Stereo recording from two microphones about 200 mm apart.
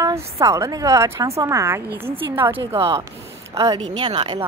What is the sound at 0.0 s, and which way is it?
A woman's voice, 15° right (ahead or behind).